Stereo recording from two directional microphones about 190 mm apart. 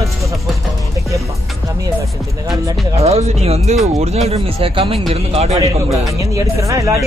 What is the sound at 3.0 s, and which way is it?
Speech, 35° right (ahead or behind).